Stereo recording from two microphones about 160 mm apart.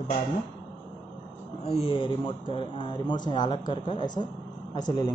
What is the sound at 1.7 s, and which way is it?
A man's voice, 35° left (ahead or behind).